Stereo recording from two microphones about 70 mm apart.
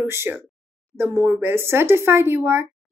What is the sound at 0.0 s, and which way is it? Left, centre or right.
Speech, right.